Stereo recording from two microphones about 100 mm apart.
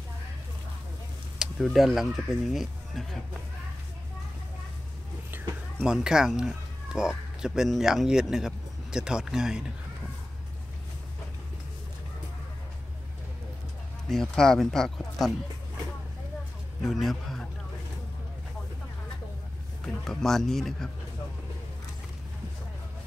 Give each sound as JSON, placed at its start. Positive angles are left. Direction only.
{"t": 1.4, "sound": "speech", "side_deg": 0}
{"t": 5.9, "sound": "speech", "side_deg": -5}
{"t": 14.0, "sound": "speech", "side_deg": 5}
{"t": 16.8, "sound": "speech", "side_deg": 0}
{"t": 19.8, "sound": "speech", "side_deg": 5}